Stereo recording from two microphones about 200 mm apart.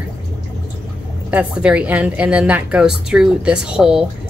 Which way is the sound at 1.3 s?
5° right (ahead or behind).